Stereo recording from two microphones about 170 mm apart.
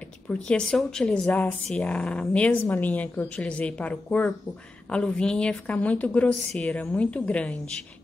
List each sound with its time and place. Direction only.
0.5 s speech: 5° left (ahead or behind)